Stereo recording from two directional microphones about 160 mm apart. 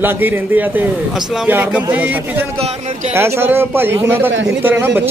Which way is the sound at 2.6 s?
40° right (ahead or behind).